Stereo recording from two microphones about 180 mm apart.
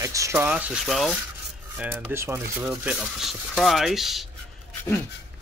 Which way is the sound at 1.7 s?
15° right (ahead or behind).